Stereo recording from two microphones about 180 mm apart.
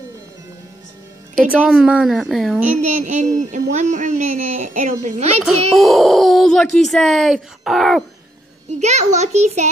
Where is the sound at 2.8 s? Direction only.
40° right (ahead or behind).